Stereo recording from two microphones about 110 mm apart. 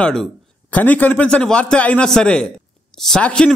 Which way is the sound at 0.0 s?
5° left (ahead or behind).